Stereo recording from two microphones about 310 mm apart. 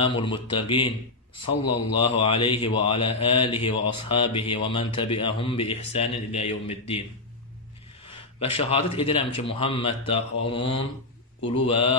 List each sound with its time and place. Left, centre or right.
0.0 s mantra: centre
2.0 s mantra: centre
8.4 s mantra: centre